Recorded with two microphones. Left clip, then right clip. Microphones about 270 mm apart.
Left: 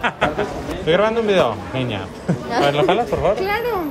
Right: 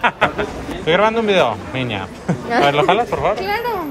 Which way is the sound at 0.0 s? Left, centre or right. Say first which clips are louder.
Right 3 dB; centre.